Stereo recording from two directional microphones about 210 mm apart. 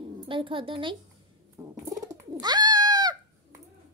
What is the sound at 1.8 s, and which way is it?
Bird, 15° right (ahead or behind).